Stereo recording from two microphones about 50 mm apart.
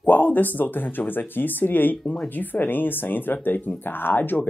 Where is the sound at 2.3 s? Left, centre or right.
Left.